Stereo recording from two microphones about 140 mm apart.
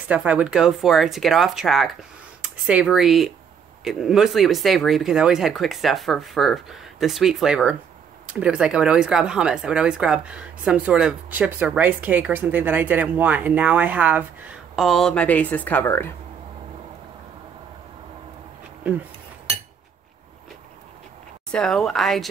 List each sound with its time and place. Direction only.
0.1 s speech: 10° right (ahead or behind); by 16.1 s 15° left (ahead or behind)
21.5 s speech: 5° left (ahead or behind)